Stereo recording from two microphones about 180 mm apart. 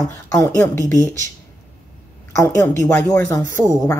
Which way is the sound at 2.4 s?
15° left (ahead or behind).